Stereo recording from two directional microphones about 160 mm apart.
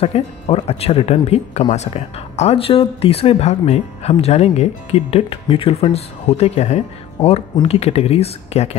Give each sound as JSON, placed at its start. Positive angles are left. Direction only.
{"t": 0.0, "sound": "speech", "side_deg": 40}